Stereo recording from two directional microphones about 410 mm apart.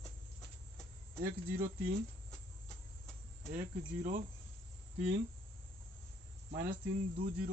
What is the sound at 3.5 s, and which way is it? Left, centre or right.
Speech, centre.